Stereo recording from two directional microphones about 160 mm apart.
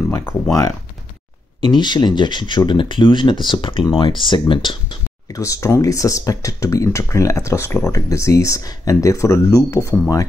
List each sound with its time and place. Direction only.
0.2 s speech: 15° left (ahead or behind)
1.6 s speech: 30° left (ahead or behind)